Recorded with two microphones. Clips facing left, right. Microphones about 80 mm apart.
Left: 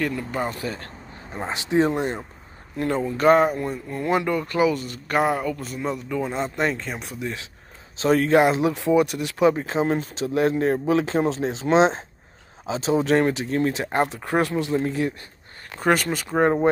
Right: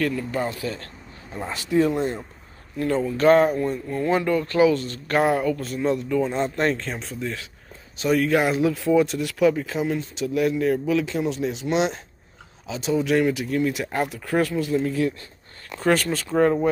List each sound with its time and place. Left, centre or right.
0.0 s speech: centre
5.2 s speech: centre
8.0 s speech: left